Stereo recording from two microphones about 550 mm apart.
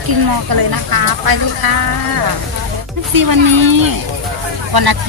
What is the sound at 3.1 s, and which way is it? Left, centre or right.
Speech, right.